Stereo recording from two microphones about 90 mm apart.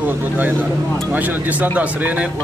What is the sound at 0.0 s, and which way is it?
A man's voice, 20° right (ahead or behind).